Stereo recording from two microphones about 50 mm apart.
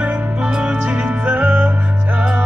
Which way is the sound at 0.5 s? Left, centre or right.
Centre.